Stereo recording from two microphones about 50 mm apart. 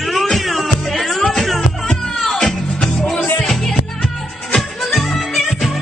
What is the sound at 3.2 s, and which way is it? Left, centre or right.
Music, left.